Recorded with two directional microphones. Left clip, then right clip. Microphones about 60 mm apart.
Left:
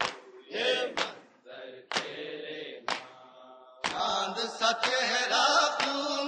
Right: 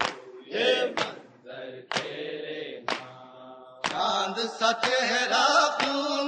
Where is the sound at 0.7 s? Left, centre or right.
Right.